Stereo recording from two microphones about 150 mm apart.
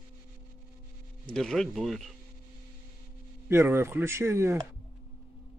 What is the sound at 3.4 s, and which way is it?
Speech, 15° right (ahead or behind).